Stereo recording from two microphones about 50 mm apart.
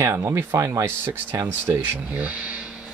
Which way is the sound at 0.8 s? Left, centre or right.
Right.